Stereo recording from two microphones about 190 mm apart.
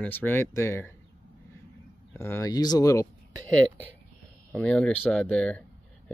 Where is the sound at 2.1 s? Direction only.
10° left (ahead or behind).